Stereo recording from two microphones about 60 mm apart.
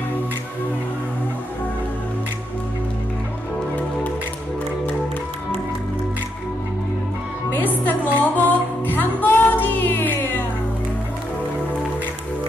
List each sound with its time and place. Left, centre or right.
7.5 s music: left